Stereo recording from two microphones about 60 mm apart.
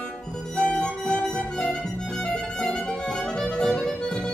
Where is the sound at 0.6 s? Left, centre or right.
Centre.